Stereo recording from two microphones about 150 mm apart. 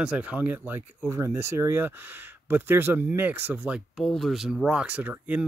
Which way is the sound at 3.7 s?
Centre (ahead or behind).